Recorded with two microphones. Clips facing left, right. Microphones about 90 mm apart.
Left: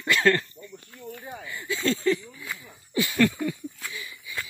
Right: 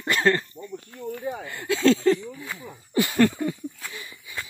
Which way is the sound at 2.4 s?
40° right (ahead or behind).